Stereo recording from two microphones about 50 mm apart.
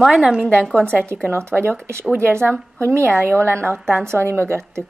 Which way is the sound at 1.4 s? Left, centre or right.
Right.